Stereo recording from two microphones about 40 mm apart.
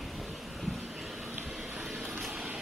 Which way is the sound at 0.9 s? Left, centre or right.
Centre.